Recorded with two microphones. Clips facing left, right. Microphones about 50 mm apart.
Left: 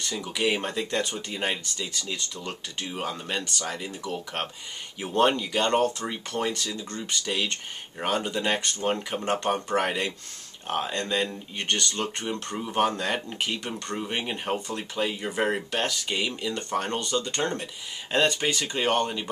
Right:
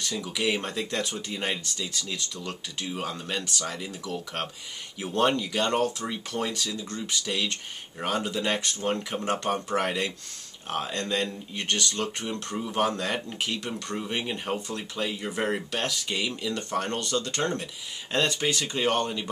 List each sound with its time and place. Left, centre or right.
0.0 s speech: centre
5.1 s speech: centre
5.6 s speech: centre
8.8 s speech: centre
14.0 s speech: centre
15.8 s speech: centre
18.4 s speech: centre